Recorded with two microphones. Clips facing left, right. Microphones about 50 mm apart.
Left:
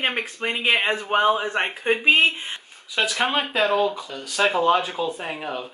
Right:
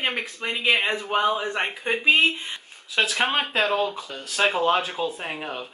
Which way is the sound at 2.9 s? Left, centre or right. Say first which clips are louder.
Even; centre.